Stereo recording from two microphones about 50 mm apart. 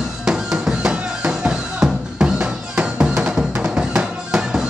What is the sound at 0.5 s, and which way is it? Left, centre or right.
Music, centre.